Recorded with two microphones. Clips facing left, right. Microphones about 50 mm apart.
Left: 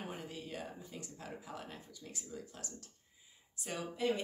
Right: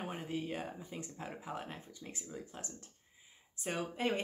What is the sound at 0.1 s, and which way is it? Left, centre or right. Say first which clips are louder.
Speech: right 5 dB; right.